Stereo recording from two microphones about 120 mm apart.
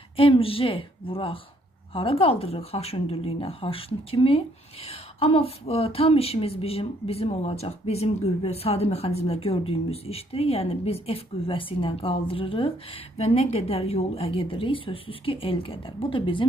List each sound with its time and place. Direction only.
0.1 s a woman's voice: 50° left (ahead or behind)